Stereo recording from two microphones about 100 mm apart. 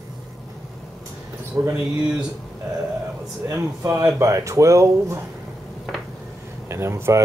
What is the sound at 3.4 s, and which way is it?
Speech, 30° right (ahead or behind).